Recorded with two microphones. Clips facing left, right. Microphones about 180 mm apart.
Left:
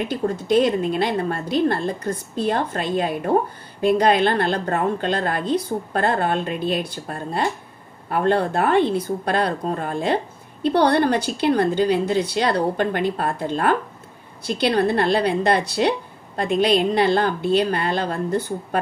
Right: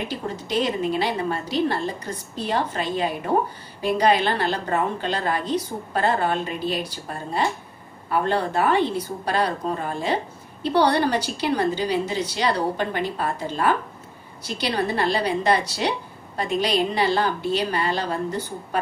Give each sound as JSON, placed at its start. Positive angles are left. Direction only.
{"t": 0.1, "sound": "a woman's voice", "side_deg": 55}